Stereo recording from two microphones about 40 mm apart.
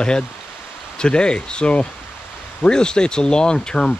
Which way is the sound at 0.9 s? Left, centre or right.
Left.